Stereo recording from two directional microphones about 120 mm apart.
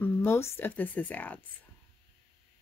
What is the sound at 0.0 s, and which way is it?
Speech, 20° left (ahead or behind).